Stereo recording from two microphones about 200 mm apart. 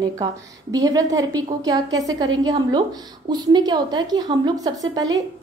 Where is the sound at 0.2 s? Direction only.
20° right (ahead or behind).